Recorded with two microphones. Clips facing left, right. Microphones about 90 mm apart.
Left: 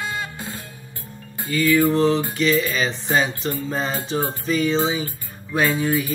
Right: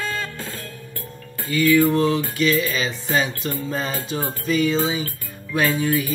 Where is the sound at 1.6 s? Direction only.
20° left (ahead or behind).